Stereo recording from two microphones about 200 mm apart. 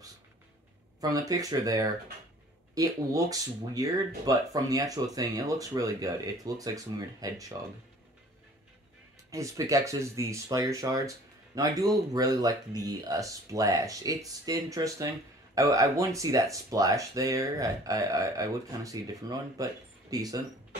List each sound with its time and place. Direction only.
1.0 s speech: 20° right (ahead or behind)
9.3 s speech: 15° right (ahead or behind)